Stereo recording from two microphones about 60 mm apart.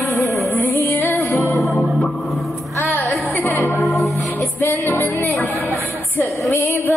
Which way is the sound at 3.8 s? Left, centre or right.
Centre.